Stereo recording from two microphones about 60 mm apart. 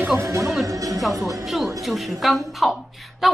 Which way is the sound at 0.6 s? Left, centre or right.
Right.